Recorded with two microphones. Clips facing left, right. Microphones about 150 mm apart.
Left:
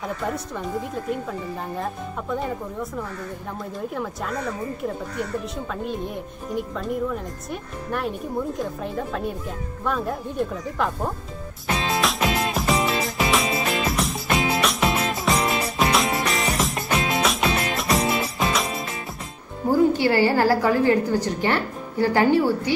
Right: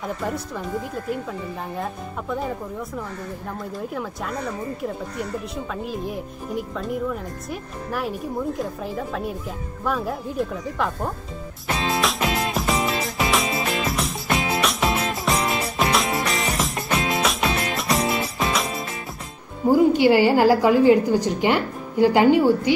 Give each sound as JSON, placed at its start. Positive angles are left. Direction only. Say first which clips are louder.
{"t": 0.2, "sound": "a woman's voice", "louder": "even", "side_deg": 0}
{"t": 3.9, "sound": "a woman's voice", "louder": "left 1 dB", "side_deg": 0}
{"t": 11.6, "sound": "music", "louder": "even", "side_deg": 0}
{"t": 19.7, "sound": "a woman's voice", "louder": "right 3 dB", "side_deg": -15}